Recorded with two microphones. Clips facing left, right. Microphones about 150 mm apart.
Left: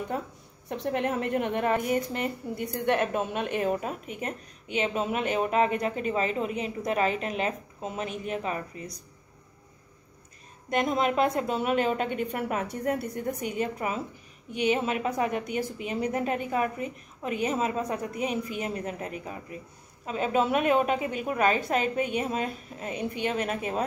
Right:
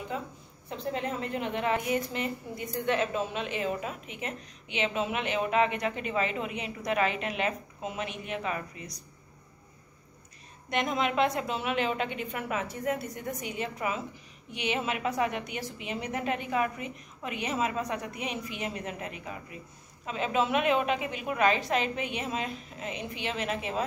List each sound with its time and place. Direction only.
0.7 s a woman's voice: 60° left (ahead or behind); by 8.8 s 35° left (ahead or behind)
10.7 s a woman's voice: 40° left (ahead or behind)